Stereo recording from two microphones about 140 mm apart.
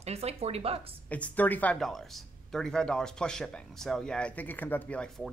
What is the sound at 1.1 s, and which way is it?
Speech, 10° left (ahead or behind).